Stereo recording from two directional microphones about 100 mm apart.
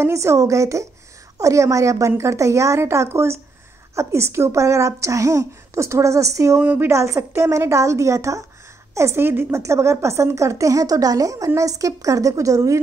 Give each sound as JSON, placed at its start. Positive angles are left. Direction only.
{"t": 0.0, "sound": "a woman's voice", "side_deg": -30}
{"t": 6.6, "sound": "a woman's voice", "side_deg": -15}
{"t": 6.9, "sound": "a woman's voice", "side_deg": -30}